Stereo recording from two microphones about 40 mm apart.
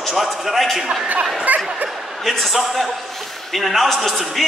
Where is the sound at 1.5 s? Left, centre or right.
Right.